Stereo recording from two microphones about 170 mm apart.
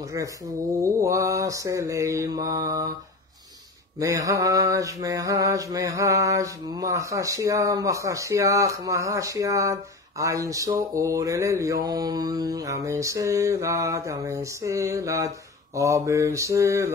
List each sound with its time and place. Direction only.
0.1 s mantra: 20° right (ahead or behind)
4.0 s mantra: 20° right (ahead or behind)